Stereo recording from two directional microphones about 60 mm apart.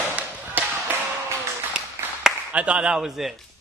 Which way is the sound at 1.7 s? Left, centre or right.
Centre.